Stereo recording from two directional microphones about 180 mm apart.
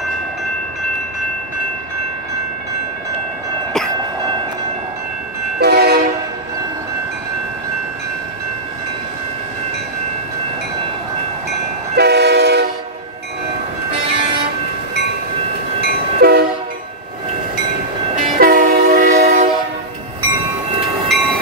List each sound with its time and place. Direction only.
5.6 s train: 65° right (ahead or behind)
11.9 s train: 65° right (ahead or behind)
16.2 s train: 60° right (ahead or behind)
18.1 s train: 50° right (ahead or behind)
21.1 s train: centre (ahead or behind)